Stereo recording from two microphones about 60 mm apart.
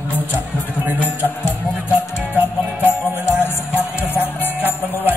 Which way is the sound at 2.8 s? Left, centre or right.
Left.